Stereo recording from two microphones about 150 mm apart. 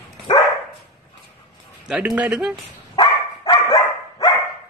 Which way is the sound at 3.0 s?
25° left (ahead or behind).